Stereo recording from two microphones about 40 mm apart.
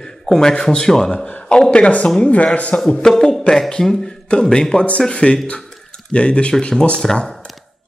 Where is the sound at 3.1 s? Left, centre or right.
Centre; by 5.4 s left.